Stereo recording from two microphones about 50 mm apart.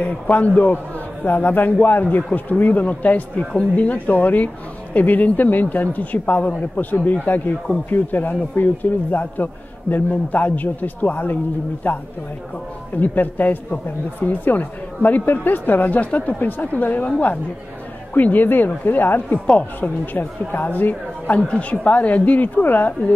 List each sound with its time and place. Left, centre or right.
0.0 s a woman's voice: left
21.4 s a woman's voice: left